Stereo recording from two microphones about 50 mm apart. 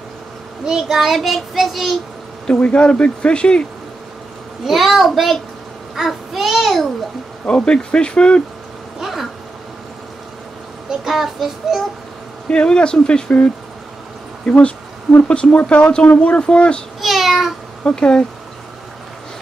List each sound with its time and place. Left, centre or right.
0.7 s a child's voice: centre
2.6 s speech: left
4.6 s a child's voice: centre
7.4 s speech: centre
9.0 s a child's voice: centre
10.9 s child singing: centre
12.4 s speech: centre
17.0 s speech: centre
17.8 s speech: centre